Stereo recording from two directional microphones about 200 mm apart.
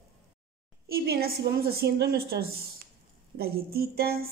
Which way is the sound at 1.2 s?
50° right (ahead or behind).